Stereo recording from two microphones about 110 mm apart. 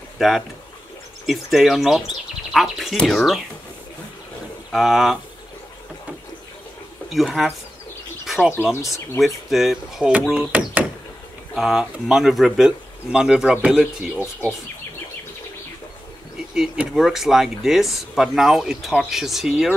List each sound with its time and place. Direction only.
0.2 s speech: 5° right (ahead or behind)
4.7 s speech: centre (ahead or behind)
7.1 s speech: 5° right (ahead or behind)
8.8 s speech: 30° left (ahead or behind)
9.2 s speech: centre (ahead or behind)
16.5 s speech: 10° right (ahead or behind)